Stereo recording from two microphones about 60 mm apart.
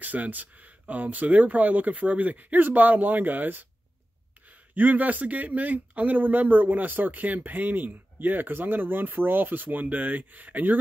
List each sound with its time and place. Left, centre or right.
0.0 s speech: right